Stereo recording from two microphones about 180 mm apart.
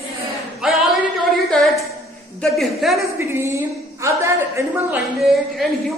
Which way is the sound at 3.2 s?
15° right (ahead or behind).